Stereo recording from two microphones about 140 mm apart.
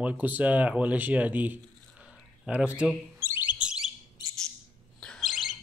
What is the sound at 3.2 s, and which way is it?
Bird, 15° right (ahead or behind).